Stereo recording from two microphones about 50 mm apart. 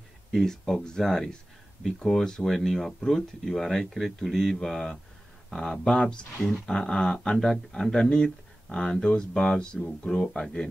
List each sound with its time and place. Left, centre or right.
0.3 s speech: centre